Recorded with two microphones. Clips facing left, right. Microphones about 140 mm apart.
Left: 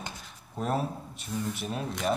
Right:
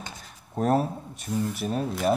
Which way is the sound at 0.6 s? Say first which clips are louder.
Right 6 dB; 45° right (ahead or behind).